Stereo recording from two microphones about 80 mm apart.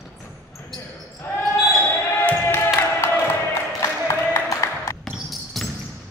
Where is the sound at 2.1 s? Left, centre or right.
Left.